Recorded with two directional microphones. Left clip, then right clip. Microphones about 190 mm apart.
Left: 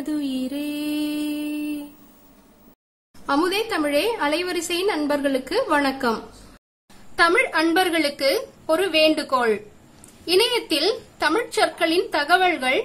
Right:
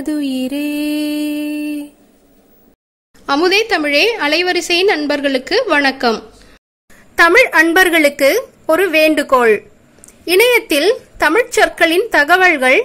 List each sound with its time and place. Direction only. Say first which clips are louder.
0.0 s mantra: right 7 dB; 30° right (ahead or behind)
3.3 s a woman's voice: right 9 dB; 25° right (ahead or behind)